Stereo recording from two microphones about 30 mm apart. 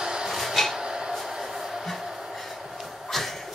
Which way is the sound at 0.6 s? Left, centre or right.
Centre.